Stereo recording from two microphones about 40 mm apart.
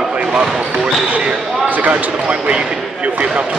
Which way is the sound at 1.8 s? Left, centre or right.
Right.